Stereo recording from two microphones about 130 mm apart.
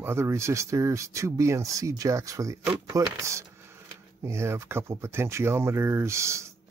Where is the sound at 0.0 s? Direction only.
20° right (ahead or behind).